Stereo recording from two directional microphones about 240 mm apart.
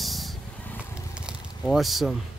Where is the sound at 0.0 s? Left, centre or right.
Centre.